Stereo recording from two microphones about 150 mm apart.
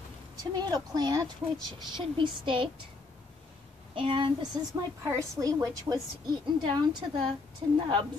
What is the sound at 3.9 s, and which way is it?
A woman's voice, 35° right (ahead or behind).